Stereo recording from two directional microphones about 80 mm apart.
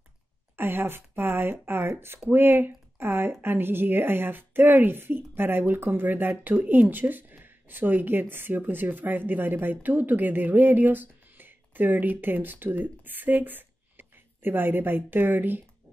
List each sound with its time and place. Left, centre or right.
0.6 s speech: right